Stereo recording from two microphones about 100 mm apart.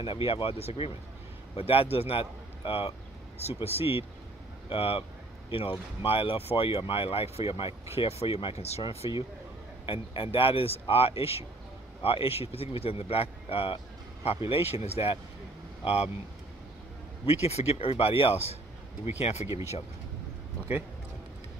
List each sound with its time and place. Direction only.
0.0 s speech: 60° left (ahead or behind); by 0.9 s 90° left
1.6 s speech: 75° left (ahead or behind)
3.6 s speech: 80° left
4.6 s speech: 65° left (ahead or behind)
7.9 s speech: 85° left
9.8 s speech: 60° left (ahead or behind)
12.0 s speech: 65° left (ahead or behind)
17.3 s speech: 90° left
19.4 s speech: 25° right (ahead or behind)